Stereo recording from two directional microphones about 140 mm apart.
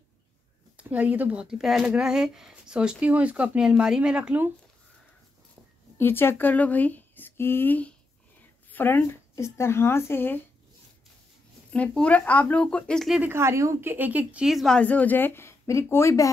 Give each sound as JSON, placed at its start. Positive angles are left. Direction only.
{"t": 0.7, "sound": "speech", "side_deg": -10}
{"t": 5.9, "sound": "speech", "side_deg": 15}
{"t": 11.7, "sound": "speech", "side_deg": 10}
{"t": 13.2, "sound": "speech", "side_deg": -15}